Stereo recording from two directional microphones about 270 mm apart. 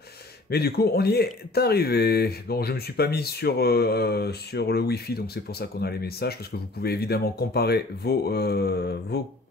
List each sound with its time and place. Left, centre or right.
0.5 s speech: left